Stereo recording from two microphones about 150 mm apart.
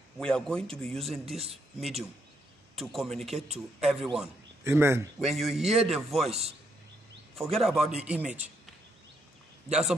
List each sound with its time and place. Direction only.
0.2 s a man's voice: 5° left (ahead or behind)
4.6 s speech: 15° right (ahead or behind)
5.2 s a man's voice: centre (ahead or behind)
7.5 s a man's voice: centre (ahead or behind)